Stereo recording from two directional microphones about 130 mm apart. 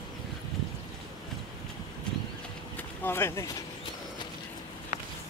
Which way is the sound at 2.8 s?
15° left (ahead or behind).